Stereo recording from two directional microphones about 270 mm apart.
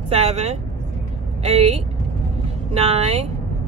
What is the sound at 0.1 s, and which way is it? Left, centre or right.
Speech, right.